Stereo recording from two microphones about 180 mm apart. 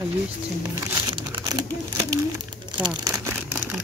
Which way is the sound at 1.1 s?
25° right (ahead or behind).